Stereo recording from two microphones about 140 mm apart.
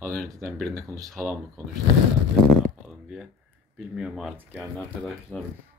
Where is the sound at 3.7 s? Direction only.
5° right (ahead or behind).